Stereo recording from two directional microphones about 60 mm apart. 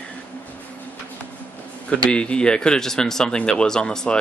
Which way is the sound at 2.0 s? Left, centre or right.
Centre.